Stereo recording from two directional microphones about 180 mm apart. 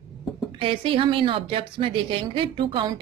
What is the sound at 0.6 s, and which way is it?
A woman's voice, 30° right (ahead or behind).